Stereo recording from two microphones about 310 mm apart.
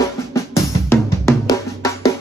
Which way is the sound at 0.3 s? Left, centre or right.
Centre.